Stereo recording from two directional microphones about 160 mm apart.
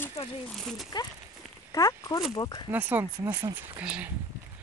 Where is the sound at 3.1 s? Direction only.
25° right (ahead or behind).